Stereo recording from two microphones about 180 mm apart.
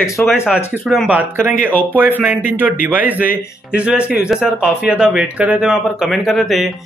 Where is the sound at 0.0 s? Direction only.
Centre (ahead or behind).